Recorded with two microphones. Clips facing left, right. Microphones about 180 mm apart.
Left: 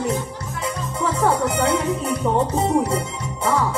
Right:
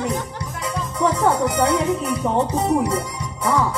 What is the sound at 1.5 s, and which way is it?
Music, 25° left (ahead or behind).